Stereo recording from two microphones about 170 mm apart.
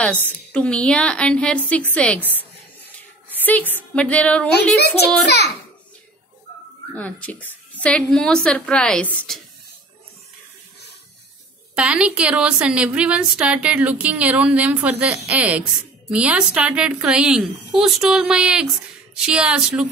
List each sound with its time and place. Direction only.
0.5 s a woman's voice: 5° left (ahead or behind)
3.3 s a woman's voice: 10° left (ahead or behind)
4.7 s a child's voice: 75° left (ahead or behind)
7.0 s a woman's voice: 10° left (ahead or behind)
11.7 s a woman's voice: 5° right (ahead or behind)